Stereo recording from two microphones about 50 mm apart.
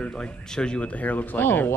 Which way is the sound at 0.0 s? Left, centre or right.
Centre.